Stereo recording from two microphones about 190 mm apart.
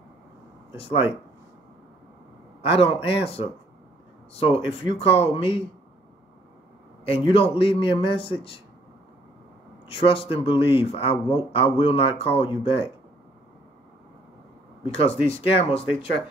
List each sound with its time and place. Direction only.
2.7 s speech: 30° left (ahead or behind)
7.1 s speech: 30° left (ahead or behind)
10.0 s speech: 30° left (ahead or behind)
15.0 s speech: 30° left (ahead or behind)